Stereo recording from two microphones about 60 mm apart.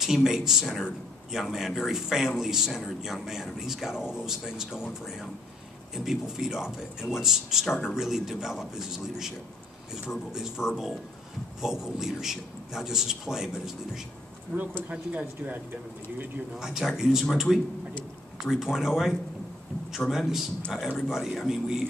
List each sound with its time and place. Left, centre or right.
0.0 s speech: centre
14.9 s speech: right
16.5 s speech: centre